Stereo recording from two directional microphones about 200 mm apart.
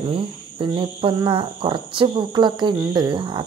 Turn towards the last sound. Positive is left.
turn(degrees=-25)  # may be behind; listen again after turning